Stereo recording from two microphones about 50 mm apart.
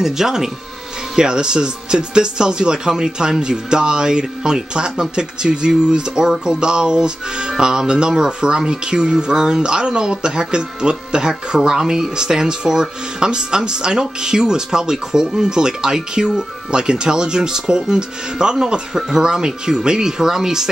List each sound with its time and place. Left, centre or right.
0.0 s speech: centre